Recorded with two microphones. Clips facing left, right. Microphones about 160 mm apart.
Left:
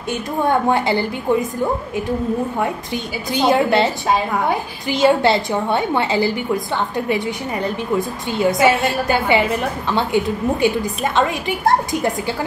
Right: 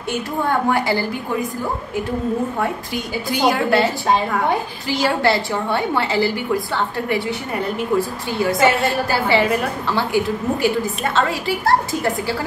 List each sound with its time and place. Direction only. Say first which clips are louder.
0.5 s a woman's voice: left 2 dB; 20° left (ahead or behind)
3.3 s a woman's voice: left 2 dB; 25° left (ahead or behind)